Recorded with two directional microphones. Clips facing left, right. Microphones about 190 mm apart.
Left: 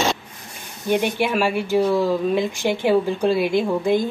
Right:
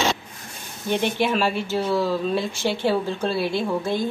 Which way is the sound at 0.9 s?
15° left (ahead or behind).